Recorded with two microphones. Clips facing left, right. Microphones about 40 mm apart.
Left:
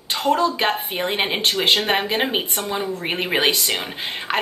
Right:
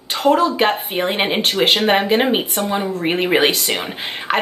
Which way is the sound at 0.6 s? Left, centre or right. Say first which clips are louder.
Right 4 dB; centre.